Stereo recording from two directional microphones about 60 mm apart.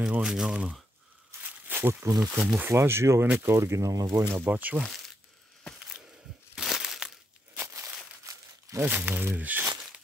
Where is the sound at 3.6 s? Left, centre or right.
Right.